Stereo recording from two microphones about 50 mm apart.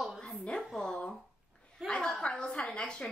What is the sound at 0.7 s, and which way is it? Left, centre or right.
A woman's voice, centre.